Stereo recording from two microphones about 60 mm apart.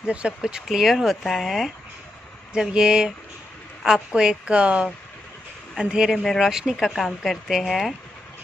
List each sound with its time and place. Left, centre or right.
0.0 s speech: centre
2.5 s a woman's voice: centre
6.1 s speech: centre
6.4 s speech: centre